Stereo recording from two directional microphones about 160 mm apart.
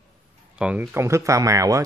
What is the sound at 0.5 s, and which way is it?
Speech, 5° right (ahead or behind).